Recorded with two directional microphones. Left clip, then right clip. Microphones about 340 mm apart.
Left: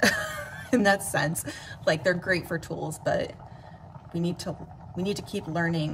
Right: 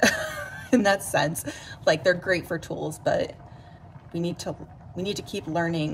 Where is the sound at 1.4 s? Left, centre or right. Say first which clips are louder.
Right 3 dB; centre.